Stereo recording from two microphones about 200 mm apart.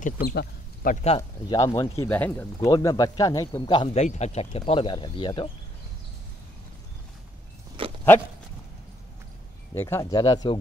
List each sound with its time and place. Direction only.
0.0 s speech: 50° left (ahead or behind)
1.0 s a man's voice: 30° left (ahead or behind)
1.6 s a man's voice: 15° left (ahead or behind)
7.8 s dog: 25° right (ahead or behind)
9.8 s a man's voice: 10° left (ahead or behind)